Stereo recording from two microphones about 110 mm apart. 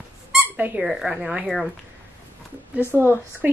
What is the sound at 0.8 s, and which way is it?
Speech, 5° right (ahead or behind).